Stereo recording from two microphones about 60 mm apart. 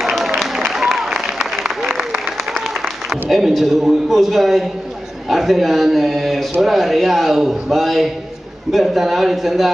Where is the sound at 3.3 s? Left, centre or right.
Centre.